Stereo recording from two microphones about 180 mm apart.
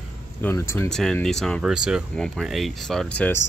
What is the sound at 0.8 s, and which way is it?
Speech, 5° left (ahead or behind).